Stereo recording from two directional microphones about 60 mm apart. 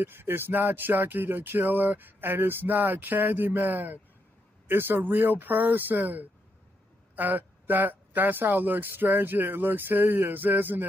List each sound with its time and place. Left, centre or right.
0.0 s speech: right